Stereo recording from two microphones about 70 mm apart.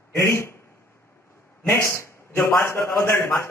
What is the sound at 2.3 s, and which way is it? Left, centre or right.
A man's voice, left.